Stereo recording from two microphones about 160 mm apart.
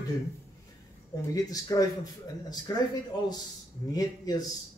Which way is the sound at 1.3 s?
20° left (ahead or behind).